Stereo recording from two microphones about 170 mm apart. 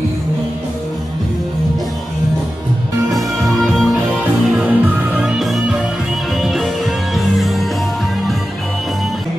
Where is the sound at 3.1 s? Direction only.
Centre (ahead or behind).